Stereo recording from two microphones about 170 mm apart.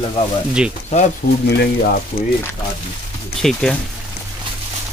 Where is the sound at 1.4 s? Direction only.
70° left (ahead or behind).